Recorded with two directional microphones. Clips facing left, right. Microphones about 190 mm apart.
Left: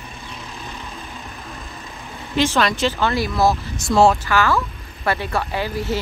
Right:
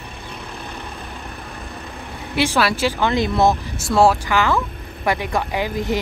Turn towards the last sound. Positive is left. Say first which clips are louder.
# right 2 dB
turn(degrees=-15)  # may be behind; listen again after turning